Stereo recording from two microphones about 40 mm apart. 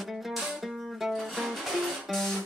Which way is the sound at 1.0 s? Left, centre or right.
Centre.